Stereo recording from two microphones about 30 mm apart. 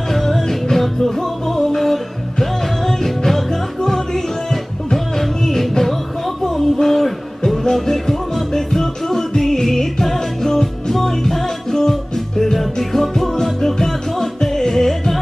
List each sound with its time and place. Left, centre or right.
0.1 s music: centre